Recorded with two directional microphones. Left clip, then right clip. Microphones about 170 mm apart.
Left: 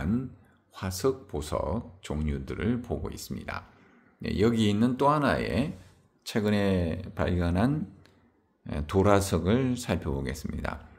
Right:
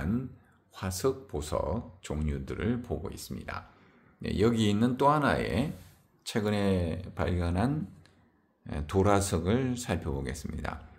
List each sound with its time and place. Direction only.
0.7 s speech: 15° left (ahead or behind)